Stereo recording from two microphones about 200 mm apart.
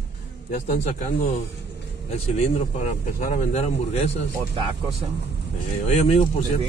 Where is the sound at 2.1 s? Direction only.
35° left (ahead or behind).